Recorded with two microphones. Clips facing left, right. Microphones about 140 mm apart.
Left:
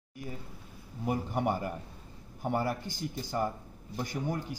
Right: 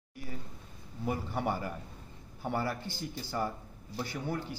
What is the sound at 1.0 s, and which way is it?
A man's voice, 15° left (ahead or behind).